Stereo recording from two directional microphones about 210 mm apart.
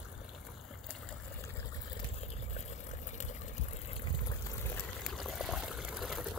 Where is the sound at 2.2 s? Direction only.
30° left (ahead or behind).